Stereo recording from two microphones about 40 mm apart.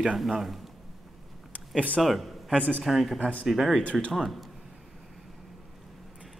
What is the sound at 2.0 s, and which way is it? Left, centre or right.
Speech, centre.